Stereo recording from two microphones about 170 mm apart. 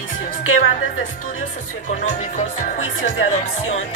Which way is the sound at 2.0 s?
45° left (ahead or behind).